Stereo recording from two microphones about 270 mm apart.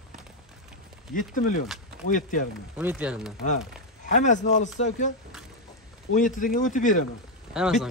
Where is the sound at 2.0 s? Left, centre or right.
Left.